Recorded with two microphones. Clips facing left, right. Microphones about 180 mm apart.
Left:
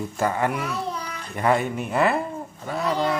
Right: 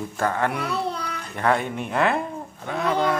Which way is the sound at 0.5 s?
65° right (ahead or behind).